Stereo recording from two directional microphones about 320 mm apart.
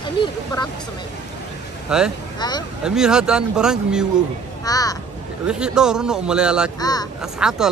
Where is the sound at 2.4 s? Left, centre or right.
Centre.